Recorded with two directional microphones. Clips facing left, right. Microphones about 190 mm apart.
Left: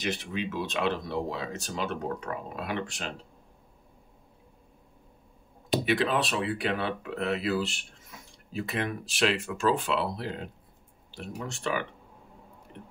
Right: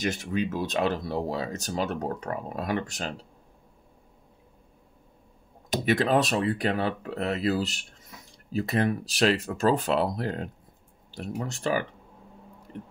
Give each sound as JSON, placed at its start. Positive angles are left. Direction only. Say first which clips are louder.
{"t": 0.0, "sound": "speech", "louder": "right 4 dB", "side_deg": -45}
{"t": 5.7, "sound": "speech", "louder": "right 2 dB", "side_deg": -45}